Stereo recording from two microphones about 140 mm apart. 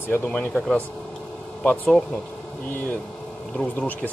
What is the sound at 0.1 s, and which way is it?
Speech, 10° left (ahead or behind).